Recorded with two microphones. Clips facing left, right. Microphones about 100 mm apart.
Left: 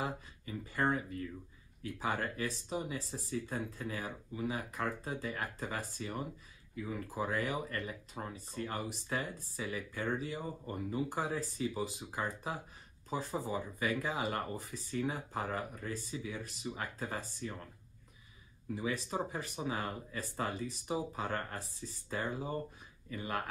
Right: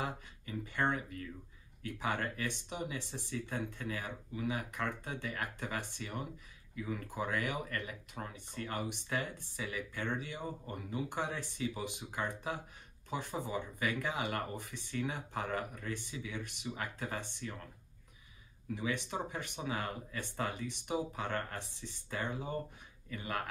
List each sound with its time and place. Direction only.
0.0 s speech: 35° left (ahead or behind)
18.8 s speech: 35° left (ahead or behind)